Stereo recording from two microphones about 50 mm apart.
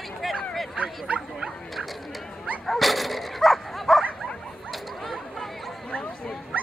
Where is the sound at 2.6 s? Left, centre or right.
Centre.